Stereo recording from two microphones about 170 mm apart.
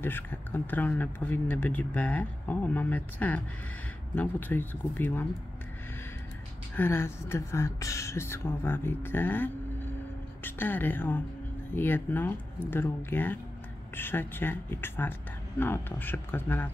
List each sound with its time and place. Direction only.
0.0 s speech: 10° left (ahead or behind)
6.8 s speech: 15° left (ahead or behind)